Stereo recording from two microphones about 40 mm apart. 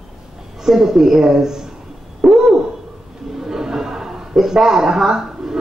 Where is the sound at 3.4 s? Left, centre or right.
Centre.